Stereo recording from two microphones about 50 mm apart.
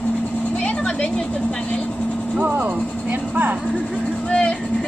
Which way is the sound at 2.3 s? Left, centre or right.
Right.